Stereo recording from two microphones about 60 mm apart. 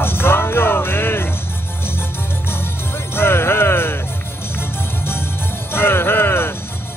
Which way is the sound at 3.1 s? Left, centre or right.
Left.